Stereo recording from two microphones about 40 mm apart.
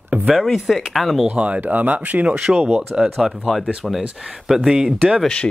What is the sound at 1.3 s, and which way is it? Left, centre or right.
Speech, right.